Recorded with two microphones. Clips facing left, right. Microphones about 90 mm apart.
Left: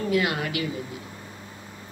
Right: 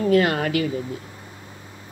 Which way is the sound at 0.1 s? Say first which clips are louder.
Right 6 dB; 45° right (ahead or behind).